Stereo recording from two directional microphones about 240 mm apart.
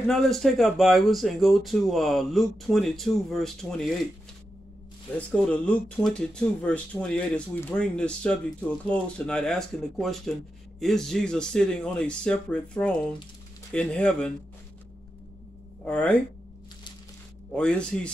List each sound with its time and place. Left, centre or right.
0.1 s speech: centre
5.1 s speech: centre
15.8 s speech: centre
17.5 s speech: centre